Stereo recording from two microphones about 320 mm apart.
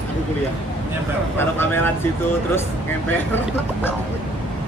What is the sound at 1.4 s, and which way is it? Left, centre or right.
Speech, centre.